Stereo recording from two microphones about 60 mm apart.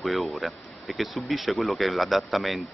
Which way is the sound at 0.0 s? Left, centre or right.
Centre.